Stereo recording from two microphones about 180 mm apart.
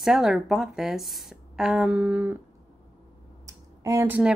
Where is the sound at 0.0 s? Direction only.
Centre (ahead or behind).